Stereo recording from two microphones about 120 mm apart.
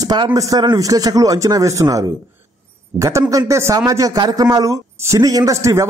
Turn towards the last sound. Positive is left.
turn(degrees=-25)  # may be behind; listen again after turning